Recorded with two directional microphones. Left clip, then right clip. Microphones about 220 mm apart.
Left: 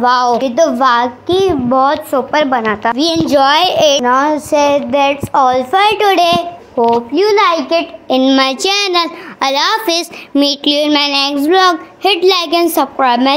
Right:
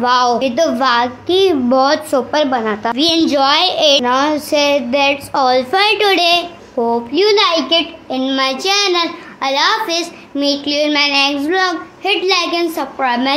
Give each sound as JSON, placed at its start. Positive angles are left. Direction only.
{"t": 0.0, "sound": "a child's voice", "side_deg": 15}
{"t": 2.3, "sound": "a child's voice", "side_deg": 10}
{"t": 4.1, "sound": "a woman's voice", "side_deg": 0}
{"t": 8.1, "sound": "a child's voice", "side_deg": 30}